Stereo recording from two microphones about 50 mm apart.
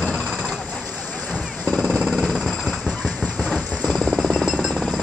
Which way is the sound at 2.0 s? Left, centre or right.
Centre.